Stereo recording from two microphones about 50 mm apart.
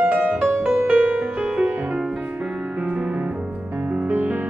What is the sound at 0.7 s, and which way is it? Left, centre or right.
Music, right.